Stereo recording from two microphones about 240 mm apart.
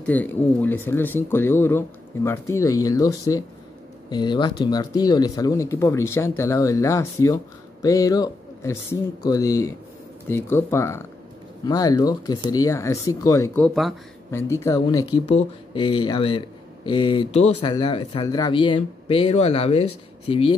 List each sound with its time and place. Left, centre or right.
0.0 s speech: centre
13.7 s speech: centre
14.5 s speech: centre